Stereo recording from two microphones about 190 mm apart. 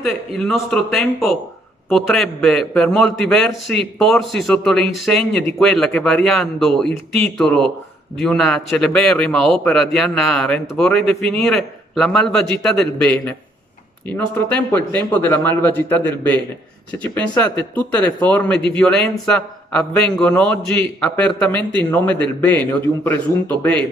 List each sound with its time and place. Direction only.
0.0 s a man's voice: centre (ahead or behind)
17.4 s a man's voice: 10° left (ahead or behind)